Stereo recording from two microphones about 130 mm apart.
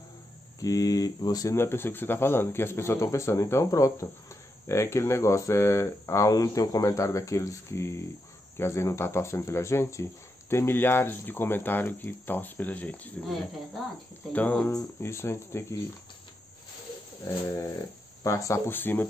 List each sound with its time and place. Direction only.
0.6 s speech: 25° left (ahead or behind); by 13.1 s 10° left (ahead or behind)
14.3 s speech: 10° left (ahead or behind)
14.7 s speech: 25° left (ahead or behind)
17.5 s speech: 30° left (ahead or behind)